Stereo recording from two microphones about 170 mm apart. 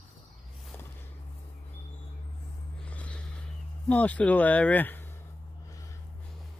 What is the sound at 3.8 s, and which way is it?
Speech, 10° left (ahead or behind).